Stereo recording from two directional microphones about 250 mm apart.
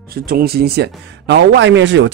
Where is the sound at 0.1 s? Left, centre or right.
Right.